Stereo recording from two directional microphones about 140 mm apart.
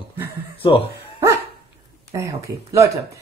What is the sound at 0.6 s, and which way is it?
Speech, 35° left (ahead or behind).